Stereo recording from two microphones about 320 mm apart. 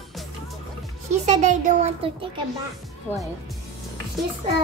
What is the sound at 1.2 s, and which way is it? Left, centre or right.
Speech, right.